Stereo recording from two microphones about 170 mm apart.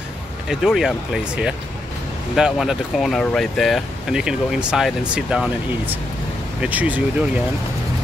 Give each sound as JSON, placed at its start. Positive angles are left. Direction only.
{"t": 0.5, "sound": "speech", "side_deg": 0}